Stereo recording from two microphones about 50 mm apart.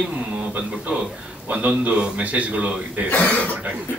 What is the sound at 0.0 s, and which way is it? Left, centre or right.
A man's voice, right.